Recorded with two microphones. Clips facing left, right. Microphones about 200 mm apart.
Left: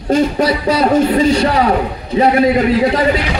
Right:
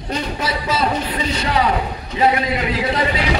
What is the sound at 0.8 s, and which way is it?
Music, 45° left (ahead or behind).